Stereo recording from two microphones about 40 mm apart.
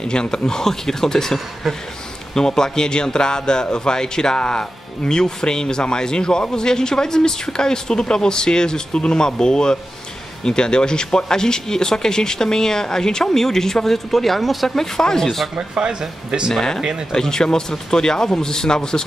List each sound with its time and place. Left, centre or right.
0.0 s speech: centre
15.0 s speech: centre
15.2 s speech: centre
15.5 s speech: right
16.5 s speech: centre